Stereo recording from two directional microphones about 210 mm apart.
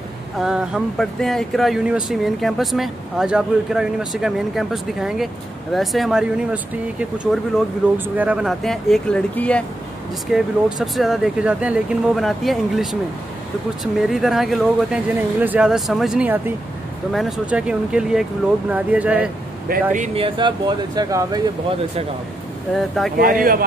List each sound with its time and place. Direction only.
0.4 s speech: 5° right (ahead or behind)
8.2 s speech: 5° right (ahead or behind)
13.9 s speech: centre (ahead or behind)
19.7 s speech: 35° right (ahead or behind)
20.2 s speech: 20° right (ahead or behind)
22.8 s speech: centre (ahead or behind)
23.1 s speech: 40° right (ahead or behind)